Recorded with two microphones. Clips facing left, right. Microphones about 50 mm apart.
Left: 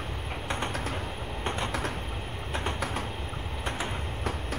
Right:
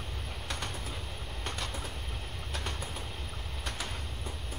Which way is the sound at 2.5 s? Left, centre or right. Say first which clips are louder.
Left 7 dB; left.